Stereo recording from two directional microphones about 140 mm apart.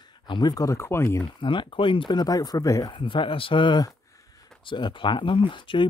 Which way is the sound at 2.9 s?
35° left (ahead or behind).